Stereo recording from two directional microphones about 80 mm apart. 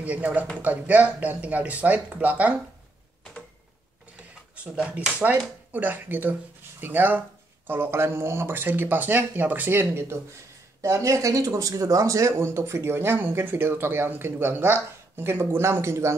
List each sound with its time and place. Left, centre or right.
0.0 s speech: centre
4.6 s speech: centre
10.8 s speech: right